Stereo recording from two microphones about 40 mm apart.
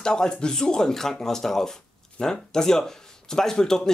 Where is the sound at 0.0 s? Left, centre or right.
Centre.